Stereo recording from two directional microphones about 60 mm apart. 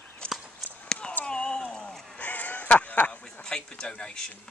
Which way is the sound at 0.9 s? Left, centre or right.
Centre.